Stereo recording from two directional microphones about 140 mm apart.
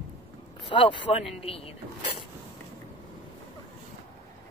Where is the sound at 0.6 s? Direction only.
35° left (ahead or behind).